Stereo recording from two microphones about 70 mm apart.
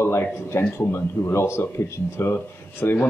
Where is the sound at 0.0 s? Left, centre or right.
Left.